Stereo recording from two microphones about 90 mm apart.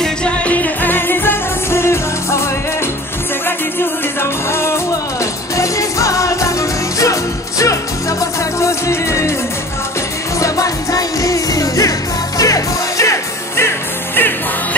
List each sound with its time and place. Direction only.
0.0 s music: 15° left (ahead or behind); by 2.4 s 30° left (ahead or behind)
4.2 s music: 30° left (ahead or behind)
10.4 s music: 40° left (ahead or behind); by 14.8 s 25° left (ahead or behind)